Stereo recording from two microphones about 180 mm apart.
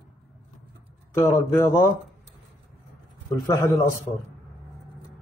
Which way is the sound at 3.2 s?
15° left (ahead or behind).